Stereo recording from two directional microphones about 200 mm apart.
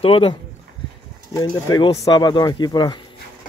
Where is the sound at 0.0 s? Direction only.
25° left (ahead or behind).